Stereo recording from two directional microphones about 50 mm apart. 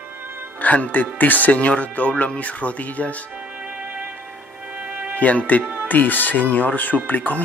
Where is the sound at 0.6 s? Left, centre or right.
Left.